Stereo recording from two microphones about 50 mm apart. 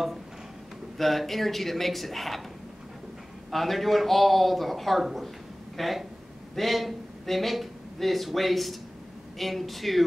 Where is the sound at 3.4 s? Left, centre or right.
Centre.